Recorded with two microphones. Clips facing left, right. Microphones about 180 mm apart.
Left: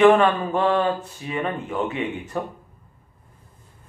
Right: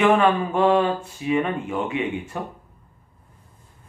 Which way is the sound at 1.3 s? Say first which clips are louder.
Right 4 dB; 10° right (ahead or behind).